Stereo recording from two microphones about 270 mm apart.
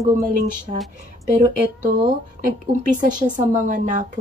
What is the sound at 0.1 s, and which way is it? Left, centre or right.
Speech, right.